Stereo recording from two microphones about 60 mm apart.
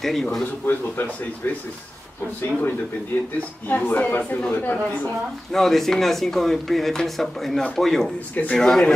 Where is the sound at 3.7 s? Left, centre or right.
Left.